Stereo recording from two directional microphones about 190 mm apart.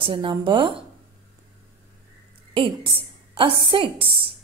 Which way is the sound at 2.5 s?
25° right (ahead or behind).